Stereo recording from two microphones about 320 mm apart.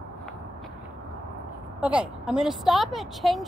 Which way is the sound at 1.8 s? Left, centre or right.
Centre.